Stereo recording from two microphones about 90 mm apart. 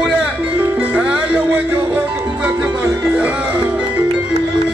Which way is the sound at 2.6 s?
30° right (ahead or behind).